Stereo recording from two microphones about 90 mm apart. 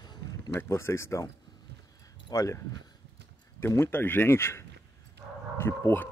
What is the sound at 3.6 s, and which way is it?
Speech, 25° left (ahead or behind).